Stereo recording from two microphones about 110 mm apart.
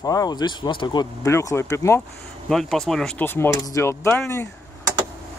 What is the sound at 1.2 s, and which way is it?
Speech, 25° left (ahead or behind).